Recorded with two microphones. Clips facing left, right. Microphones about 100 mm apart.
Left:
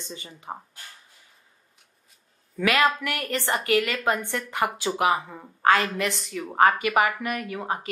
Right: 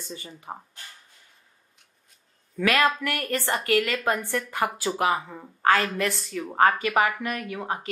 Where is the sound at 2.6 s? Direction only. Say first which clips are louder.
Even; 20° left (ahead or behind).